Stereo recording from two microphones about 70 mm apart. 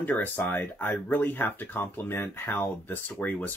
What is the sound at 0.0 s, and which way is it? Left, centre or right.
Speech, left.